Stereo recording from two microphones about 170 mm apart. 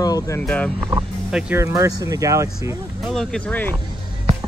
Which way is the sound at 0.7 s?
20° right (ahead or behind).